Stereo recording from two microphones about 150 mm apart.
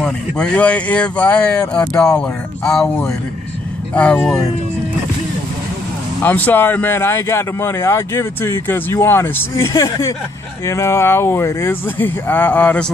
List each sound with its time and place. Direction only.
0.0 s speech: 5° left (ahead or behind)
6.2 s speech: 10° left (ahead or behind)